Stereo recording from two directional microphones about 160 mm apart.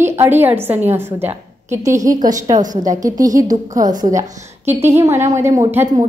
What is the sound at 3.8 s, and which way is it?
Speech, 55° right (ahead or behind).